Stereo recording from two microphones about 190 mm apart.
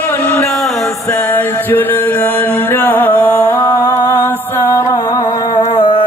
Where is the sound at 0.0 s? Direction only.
10° left (ahead or behind).